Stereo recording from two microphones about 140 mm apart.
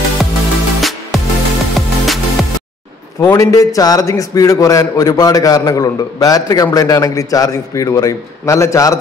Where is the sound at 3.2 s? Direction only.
25° left (ahead or behind).